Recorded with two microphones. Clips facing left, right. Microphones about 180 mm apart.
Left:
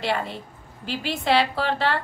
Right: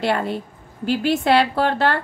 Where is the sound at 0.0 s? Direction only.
50° right (ahead or behind).